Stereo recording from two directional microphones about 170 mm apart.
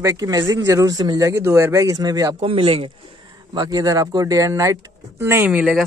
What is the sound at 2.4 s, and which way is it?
Speech, 30° right (ahead or behind).